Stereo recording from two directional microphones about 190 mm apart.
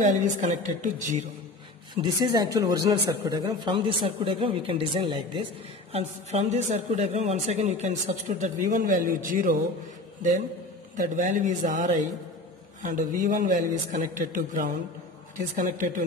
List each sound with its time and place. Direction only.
0.0 s a man's voice: 40° right (ahead or behind)
2.0 s a man's voice: 20° right (ahead or behind); by 9.6 s 45° right (ahead or behind)
11.0 s a man's voice: 40° right (ahead or behind)